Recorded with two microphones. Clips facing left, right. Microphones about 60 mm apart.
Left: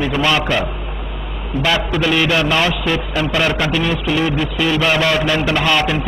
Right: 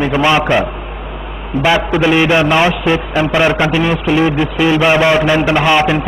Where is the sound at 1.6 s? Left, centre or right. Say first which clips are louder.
Right 5 dB; right.